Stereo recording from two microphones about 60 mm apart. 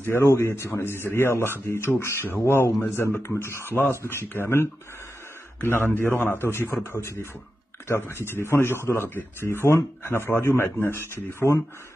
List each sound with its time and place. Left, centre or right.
0.0 s a man's voice: left
8.5 s a man's voice: left